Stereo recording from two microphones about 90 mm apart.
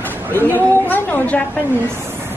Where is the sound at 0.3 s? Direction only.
25° left (ahead or behind).